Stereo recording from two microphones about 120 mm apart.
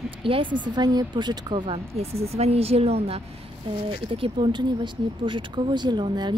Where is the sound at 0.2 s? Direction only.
45° right (ahead or behind).